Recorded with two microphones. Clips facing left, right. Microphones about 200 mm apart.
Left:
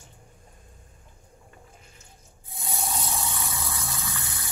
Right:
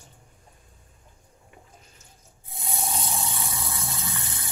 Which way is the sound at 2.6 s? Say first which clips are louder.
Right 1 dB; 25° right (ahead or behind).